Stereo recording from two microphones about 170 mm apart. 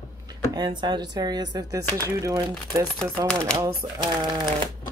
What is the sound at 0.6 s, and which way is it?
Speech, 25° right (ahead or behind).